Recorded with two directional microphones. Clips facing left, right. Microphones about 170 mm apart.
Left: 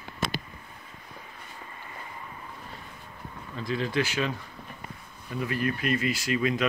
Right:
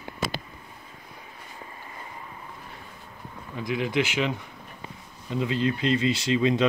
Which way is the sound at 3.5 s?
15° right (ahead or behind).